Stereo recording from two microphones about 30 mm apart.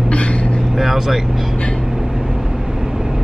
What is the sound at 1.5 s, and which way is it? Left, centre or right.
Vehicle, left.